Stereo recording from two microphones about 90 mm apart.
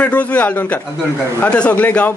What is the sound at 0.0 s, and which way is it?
A man's voice, 15° left (ahead or behind).